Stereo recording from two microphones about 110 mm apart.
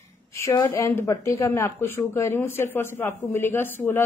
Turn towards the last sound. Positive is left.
turn(degrees=20)  # may be behind; listen again after turning